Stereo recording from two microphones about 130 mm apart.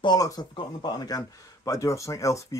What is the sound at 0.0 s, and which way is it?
Speech, 35° left (ahead or behind).